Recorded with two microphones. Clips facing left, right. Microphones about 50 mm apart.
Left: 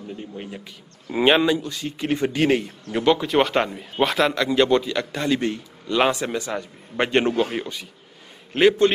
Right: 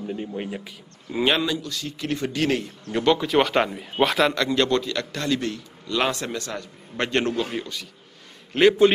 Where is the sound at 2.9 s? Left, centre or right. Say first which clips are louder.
Left 1 dB; centre.